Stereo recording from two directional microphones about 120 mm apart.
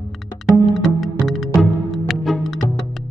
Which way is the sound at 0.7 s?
Centre (ahead or behind).